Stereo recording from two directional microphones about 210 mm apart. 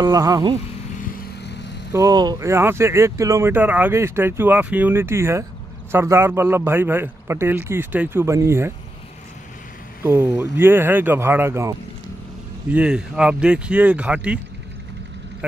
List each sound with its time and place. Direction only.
0.0 s speech: 15° right (ahead or behind)
1.1 s vehicle: 55° left (ahead or behind)
1.9 s speech: 15° right (ahead or behind)
10.0 s speech: 10° right (ahead or behind)
12.7 s speech: 5° right (ahead or behind)